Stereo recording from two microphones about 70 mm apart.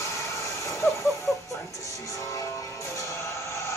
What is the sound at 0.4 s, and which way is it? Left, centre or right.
Vehicle, left.